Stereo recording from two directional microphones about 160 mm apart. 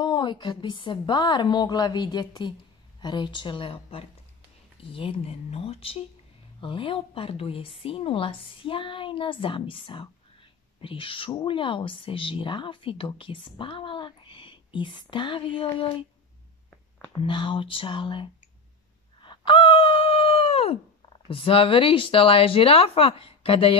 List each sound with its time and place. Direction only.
0.0 s a woman's voice: 30° left (ahead or behind)
17.2 s speech: 30° left (ahead or behind)
19.2 s a sound: 30° left (ahead or behind)